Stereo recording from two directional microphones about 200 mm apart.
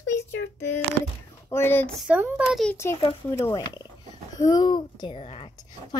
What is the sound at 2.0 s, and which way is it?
Speech, 5° right (ahead or behind).